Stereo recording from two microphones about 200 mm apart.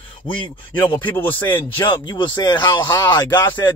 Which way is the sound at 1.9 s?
25° left (ahead or behind).